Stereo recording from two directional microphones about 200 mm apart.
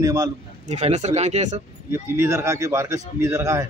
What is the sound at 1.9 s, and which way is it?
Speech, 15° right (ahead or behind).